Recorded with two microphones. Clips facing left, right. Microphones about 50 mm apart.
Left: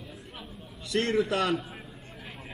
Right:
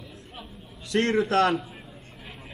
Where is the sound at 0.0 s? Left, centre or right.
Centre.